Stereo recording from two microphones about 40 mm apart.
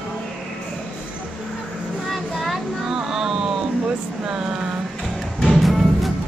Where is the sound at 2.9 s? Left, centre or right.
Centre.